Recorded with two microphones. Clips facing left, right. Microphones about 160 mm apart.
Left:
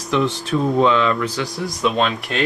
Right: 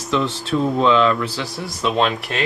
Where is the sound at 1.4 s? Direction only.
Centre (ahead or behind).